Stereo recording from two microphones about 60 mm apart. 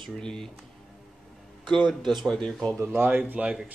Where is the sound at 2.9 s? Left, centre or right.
Right.